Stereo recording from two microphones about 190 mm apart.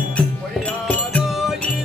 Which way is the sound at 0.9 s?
5° left (ahead or behind).